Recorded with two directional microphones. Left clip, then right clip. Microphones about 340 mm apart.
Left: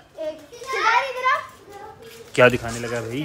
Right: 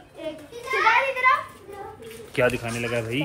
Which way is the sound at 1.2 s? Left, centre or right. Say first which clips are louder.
Right 2 dB; centre.